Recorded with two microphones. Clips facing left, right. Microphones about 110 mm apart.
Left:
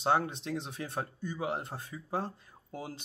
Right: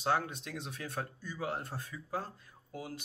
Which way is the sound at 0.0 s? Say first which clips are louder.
Left 4 dB; 25° left (ahead or behind).